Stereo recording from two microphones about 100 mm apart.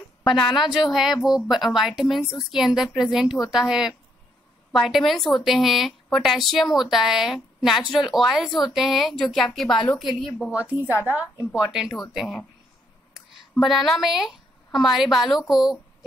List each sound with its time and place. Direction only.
0.3 s a woman's voice: centre (ahead or behind)
10.5 s a woman's voice: 15° right (ahead or behind)
11.6 s a woman's voice: 5° right (ahead or behind)
13.6 s a woman's voice: centre (ahead or behind)